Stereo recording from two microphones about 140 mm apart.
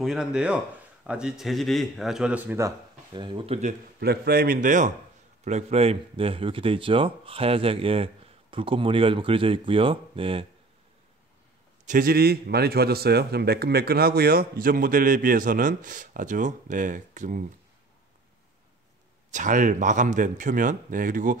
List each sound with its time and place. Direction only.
0.0 s speech: 5° right (ahead or behind)
3.1 s speech: 35° right (ahead or behind)
4.2 s a man's voice: 90° right; by 4.9 s 65° right (ahead or behind)
5.4 s speech: 55° right (ahead or behind)
11.8 s a man's voice: 80° right
19.3 s speech: 65° right (ahead or behind)